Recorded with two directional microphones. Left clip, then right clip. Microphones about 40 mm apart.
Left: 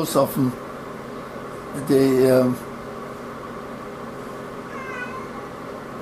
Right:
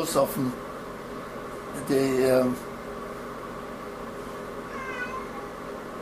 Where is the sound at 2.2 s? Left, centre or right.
Left.